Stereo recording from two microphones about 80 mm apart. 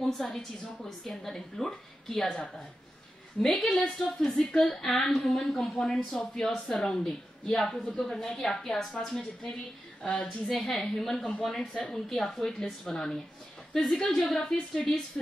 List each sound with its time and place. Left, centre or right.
0.0 s speech: centre
3.6 s a woman's voice: centre
10.5 s speech: centre